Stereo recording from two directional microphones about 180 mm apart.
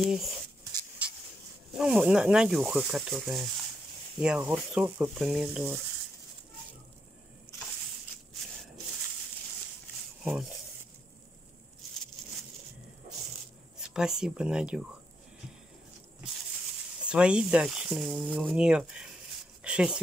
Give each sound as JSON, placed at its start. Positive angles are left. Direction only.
{"t": 0.0, "sound": "speech", "side_deg": -5}
{"t": 1.7, "sound": "speech", "side_deg": -5}
{"t": 13.7, "sound": "speech", "side_deg": -5}
{"t": 17.0, "sound": "speech", "side_deg": -5}
{"t": 19.6, "sound": "a sound", "side_deg": -5}